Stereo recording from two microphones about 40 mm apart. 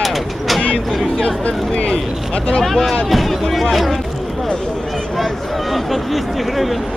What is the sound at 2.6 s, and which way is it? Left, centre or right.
Speech, centre.